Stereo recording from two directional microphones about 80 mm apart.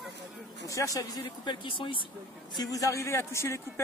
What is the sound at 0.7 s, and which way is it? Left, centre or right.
Speech, left.